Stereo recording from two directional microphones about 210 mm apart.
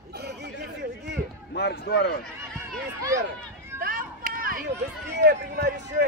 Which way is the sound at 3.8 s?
45° right (ahead or behind).